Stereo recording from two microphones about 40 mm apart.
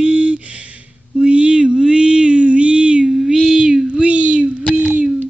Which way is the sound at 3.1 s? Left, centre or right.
Centre.